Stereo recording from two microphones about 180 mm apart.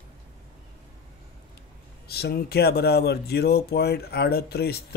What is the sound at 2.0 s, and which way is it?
Speech, 60° left (ahead or behind).